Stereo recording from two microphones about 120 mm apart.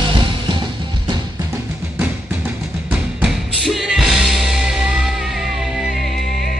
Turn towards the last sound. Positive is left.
turn(degrees=0)  # may be behind; listen again after turning